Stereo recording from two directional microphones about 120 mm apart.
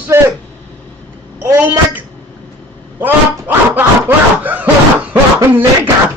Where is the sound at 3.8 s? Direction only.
15° right (ahead or behind).